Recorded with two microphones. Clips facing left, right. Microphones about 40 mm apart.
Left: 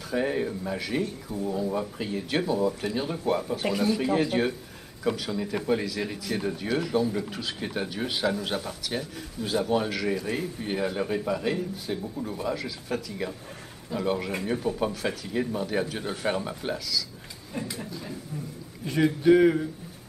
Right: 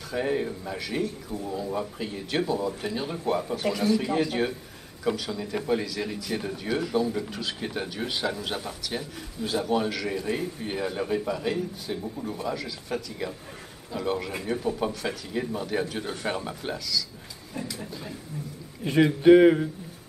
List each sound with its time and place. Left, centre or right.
0.1 s speech: centre
3.6 s a man's voice: centre
18.9 s a man's voice: right